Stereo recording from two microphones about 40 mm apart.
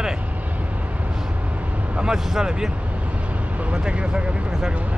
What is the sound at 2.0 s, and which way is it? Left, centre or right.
Speech, centre.